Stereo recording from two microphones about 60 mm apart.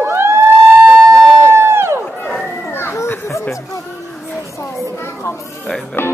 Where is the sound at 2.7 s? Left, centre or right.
Left.